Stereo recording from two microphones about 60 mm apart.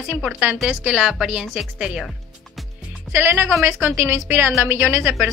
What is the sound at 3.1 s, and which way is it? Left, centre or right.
A woman's voice, right.